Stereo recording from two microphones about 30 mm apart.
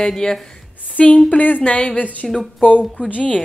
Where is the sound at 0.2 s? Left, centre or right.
Left.